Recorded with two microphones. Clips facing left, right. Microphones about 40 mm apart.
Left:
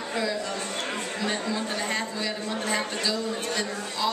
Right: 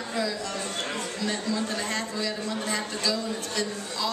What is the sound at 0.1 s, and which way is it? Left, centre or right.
A man's voice, left.